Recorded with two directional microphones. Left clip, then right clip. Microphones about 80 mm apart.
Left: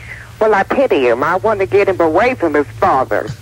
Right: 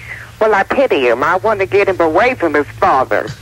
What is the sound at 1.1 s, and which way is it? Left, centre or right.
Speech, right.